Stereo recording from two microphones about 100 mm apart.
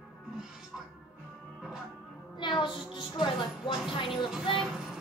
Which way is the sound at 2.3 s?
50° left (ahead or behind).